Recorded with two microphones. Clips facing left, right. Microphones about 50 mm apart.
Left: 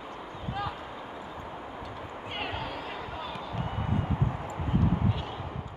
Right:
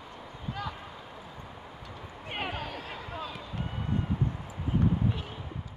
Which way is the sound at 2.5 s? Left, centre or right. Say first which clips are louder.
Left 2 dB; centre.